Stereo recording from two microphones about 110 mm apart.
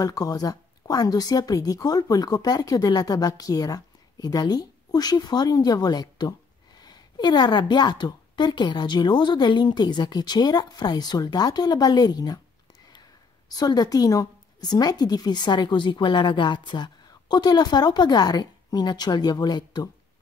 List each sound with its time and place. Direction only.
0.0 s a woman's voice: 35° left (ahead or behind)
13.5 s a woman's voice: 35° left (ahead or behind)